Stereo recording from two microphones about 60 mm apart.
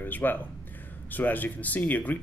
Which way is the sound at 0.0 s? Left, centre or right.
Left.